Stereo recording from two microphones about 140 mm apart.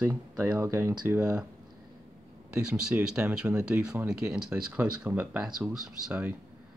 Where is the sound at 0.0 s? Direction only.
15° right (ahead or behind).